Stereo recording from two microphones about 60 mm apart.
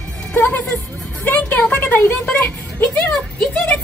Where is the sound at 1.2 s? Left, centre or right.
Left.